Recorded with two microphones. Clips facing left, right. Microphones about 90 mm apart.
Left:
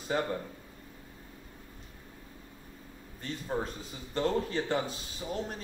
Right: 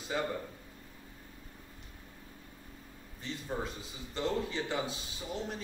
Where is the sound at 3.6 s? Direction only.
45° left (ahead or behind).